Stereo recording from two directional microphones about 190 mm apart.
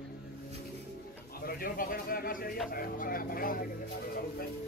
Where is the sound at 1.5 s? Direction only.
50° left (ahead or behind).